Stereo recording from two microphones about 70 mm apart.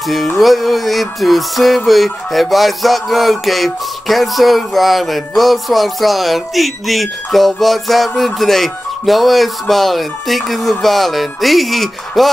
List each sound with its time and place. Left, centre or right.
0.4 s music: centre